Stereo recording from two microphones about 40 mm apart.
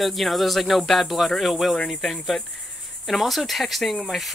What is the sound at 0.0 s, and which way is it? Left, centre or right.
Speech, centre.